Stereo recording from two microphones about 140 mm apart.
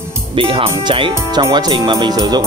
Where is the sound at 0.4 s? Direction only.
40° right (ahead or behind).